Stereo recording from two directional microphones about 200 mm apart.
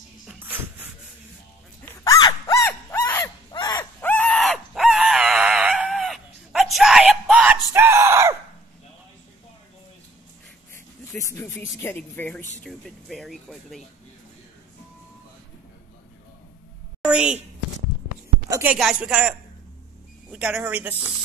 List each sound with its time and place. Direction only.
0.3 s music: 10° right (ahead or behind)
2.0 s a sound: 20° left (ahead or behind); by 8.4 s 15° right (ahead or behind)
11.1 s snake: 15° left (ahead or behind)
11.8 s a woman's voice: 10° left (ahead or behind)
17.0 s a sound: 5° right (ahead or behind)
18.5 s speech: 10° right (ahead or behind)